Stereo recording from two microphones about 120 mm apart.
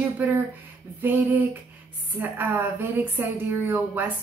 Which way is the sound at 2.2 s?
15° right (ahead or behind).